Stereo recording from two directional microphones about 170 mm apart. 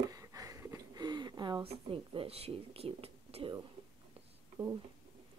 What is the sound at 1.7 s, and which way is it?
Speech, 35° right (ahead or behind).